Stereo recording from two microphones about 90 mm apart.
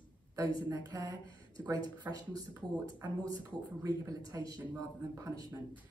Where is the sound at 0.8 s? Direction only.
35° right (ahead or behind).